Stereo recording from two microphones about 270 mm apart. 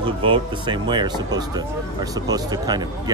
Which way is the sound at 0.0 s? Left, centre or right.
Centre.